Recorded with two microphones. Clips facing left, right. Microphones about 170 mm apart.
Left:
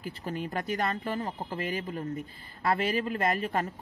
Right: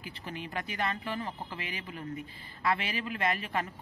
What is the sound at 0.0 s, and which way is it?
A woman's voice, 45° left (ahead or behind).